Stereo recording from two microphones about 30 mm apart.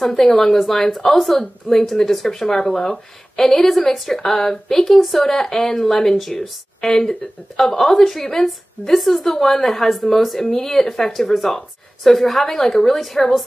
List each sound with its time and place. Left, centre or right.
0.0 s a woman's voice: centre
8.9 s a woman's voice: centre
12.4 s a woman's voice: centre